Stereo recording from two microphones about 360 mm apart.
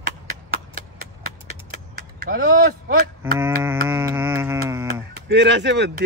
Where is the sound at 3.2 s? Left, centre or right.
Centre.